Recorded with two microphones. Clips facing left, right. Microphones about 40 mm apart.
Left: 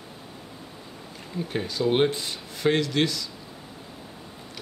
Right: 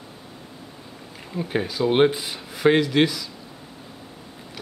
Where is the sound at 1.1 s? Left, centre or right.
Centre.